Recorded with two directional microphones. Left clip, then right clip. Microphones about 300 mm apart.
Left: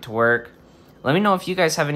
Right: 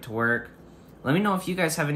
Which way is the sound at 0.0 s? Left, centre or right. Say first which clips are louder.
Left 7 dB; centre.